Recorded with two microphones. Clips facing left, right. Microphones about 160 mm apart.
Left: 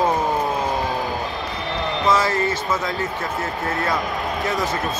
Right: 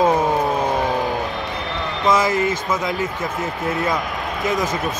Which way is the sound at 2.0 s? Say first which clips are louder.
Right 3 dB; 15° right (ahead or behind).